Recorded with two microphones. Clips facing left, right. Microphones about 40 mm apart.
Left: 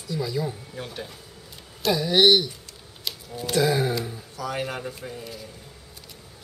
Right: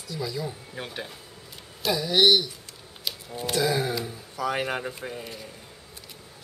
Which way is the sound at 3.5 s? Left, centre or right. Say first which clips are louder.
Left 3 dB; centre.